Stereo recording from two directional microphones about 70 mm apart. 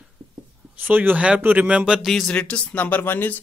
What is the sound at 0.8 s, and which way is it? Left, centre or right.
Speech, right.